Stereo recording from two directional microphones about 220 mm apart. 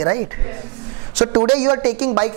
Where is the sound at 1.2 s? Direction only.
20° right (ahead or behind).